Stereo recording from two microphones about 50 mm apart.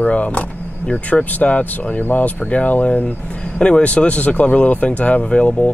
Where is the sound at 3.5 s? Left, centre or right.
Centre.